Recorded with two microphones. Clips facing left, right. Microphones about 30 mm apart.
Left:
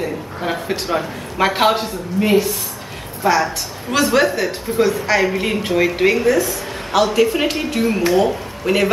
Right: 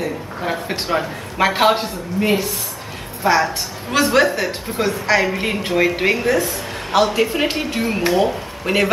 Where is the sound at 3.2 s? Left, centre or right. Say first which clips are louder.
Even; right.